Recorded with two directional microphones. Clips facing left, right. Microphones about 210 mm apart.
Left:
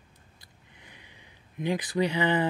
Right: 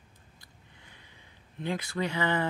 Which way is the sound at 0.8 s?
15° left (ahead or behind).